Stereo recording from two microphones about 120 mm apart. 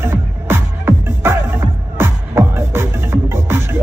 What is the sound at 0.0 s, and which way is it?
Music, 20° right (ahead or behind).